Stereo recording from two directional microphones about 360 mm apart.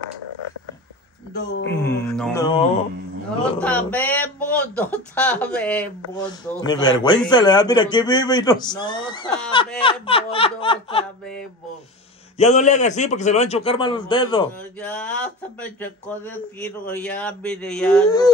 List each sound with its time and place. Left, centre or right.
1.3 s speech: left
1.7 s mantra: centre
3.5 s speech: centre
9.8 s laughter: centre
12.4 s speech: centre